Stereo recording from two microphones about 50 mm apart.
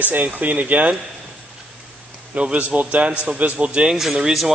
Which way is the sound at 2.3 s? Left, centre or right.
Right.